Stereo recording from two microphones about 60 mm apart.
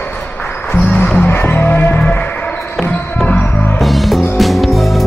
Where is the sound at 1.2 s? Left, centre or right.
Left.